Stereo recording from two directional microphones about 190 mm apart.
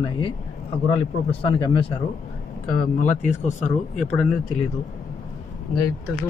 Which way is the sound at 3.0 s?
40° left (ahead or behind).